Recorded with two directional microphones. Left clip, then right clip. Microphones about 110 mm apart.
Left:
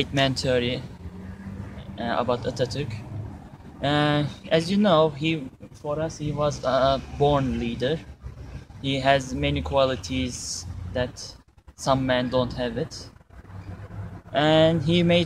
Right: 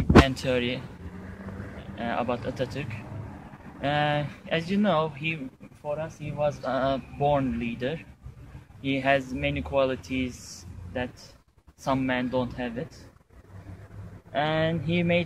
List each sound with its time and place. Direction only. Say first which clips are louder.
0.3 s speech: left 3 dB; 20° left (ahead or behind)
2.0 s speech: left 4 dB; 20° left (ahead or behind)
14.3 s speech: left 7 dB; 15° left (ahead or behind)